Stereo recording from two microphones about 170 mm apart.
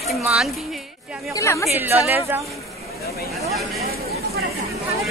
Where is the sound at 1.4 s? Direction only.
15° left (ahead or behind).